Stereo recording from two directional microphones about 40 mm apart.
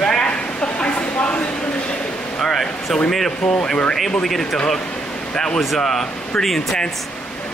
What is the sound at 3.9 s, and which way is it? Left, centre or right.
Speech, centre.